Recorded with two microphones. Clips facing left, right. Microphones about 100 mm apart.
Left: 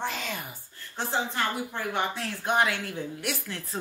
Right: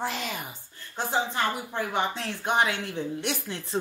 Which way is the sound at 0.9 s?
15° right (ahead or behind).